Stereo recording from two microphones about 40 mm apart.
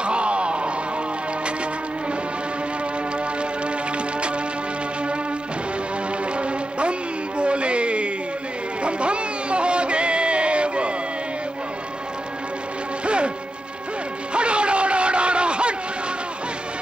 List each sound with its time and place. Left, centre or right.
0.0 s music: right
6.3 s music: right
13.0 s music: right
14.3 s a sound: right